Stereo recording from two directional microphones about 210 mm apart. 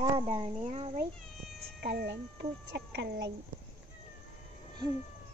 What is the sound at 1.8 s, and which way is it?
Speech, 50° right (ahead or behind).